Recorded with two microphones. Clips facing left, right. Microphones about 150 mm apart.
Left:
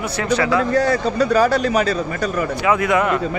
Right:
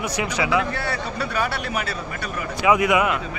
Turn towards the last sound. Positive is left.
turn(degrees=-10)  # may be behind; listen again after turning